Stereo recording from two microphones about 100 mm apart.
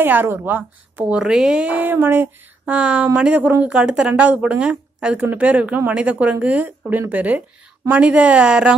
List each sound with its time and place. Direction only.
0.0 s a woman's voice: 20° right (ahead or behind)